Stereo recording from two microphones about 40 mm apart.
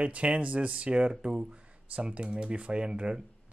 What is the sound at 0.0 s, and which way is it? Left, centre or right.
Speech, right.